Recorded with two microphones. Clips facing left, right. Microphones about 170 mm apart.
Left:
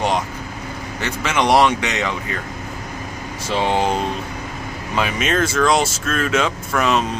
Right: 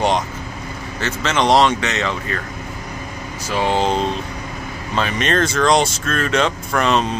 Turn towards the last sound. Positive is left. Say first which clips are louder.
# right 1 dB
turn(degrees=5)  # may be behind; listen again after turning